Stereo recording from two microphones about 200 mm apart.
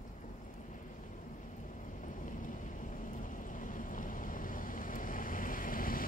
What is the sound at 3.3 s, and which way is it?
Boat, 40° left (ahead or behind).